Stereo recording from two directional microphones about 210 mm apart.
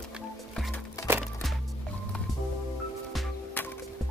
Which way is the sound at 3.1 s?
Centre (ahead or behind).